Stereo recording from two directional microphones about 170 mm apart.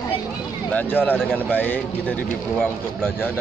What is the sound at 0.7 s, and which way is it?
Speech, 10° left (ahead or behind).